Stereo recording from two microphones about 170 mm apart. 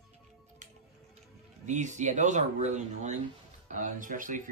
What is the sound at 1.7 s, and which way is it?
Speech, 45° right (ahead or behind).